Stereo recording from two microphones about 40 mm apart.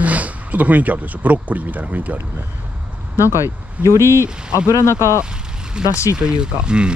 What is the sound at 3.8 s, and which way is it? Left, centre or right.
Speech, right.